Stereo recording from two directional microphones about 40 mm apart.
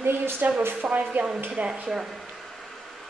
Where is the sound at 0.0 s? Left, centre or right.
Right.